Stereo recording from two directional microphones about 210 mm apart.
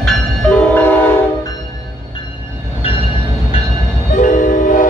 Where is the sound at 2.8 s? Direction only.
25° left (ahead or behind).